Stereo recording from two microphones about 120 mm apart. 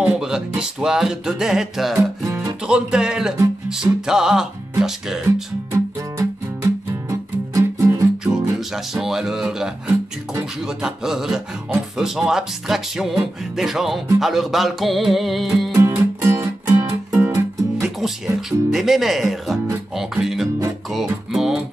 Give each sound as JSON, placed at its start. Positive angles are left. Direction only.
{"t": 0.0, "sound": "speech", "side_deg": -5}
{"t": 2.2, "sound": "guitar", "side_deg": -25}
{"t": 2.6, "sound": "speech", "side_deg": -5}
{"t": 5.7, "sound": "music", "side_deg": -20}
{"t": 8.2, "sound": "music", "side_deg": -5}
{"t": 10.8, "sound": "speech", "side_deg": -5}
{"t": 15.7, "sound": "music", "side_deg": -20}
{"t": 17.8, "sound": "speech", "side_deg": -5}
{"t": 20.0, "sound": "music", "side_deg": -5}